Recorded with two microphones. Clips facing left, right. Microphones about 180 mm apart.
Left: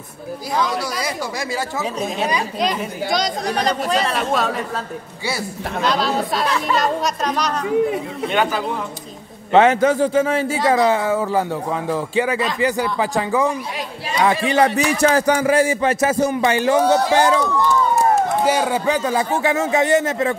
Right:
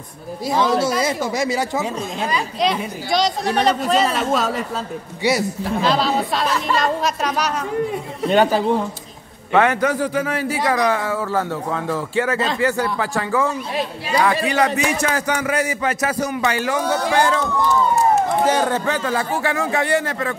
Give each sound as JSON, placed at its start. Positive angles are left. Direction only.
{"t": 0.5, "sound": "speech", "side_deg": -25}
{"t": 2.6, "sound": "speech", "side_deg": 0}
{"t": 5.9, "sound": "speech", "side_deg": 0}
{"t": 8.3, "sound": "a man's voice", "side_deg": -30}
{"t": 9.5, "sound": "a man's voice", "side_deg": 25}
{"t": 18.4, "sound": "a man's voice", "side_deg": 10}